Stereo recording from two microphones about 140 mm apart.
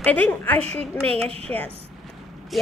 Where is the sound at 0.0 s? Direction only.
10° left (ahead or behind).